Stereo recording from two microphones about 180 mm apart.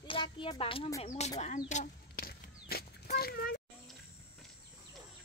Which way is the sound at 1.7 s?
45° left (ahead or behind).